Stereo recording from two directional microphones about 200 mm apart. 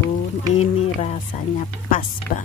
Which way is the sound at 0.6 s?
35° left (ahead or behind).